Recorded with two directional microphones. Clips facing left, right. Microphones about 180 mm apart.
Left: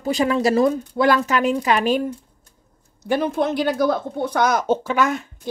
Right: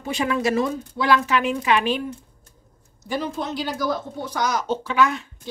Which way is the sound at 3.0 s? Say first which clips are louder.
Left 7 dB; 60° left (ahead or behind).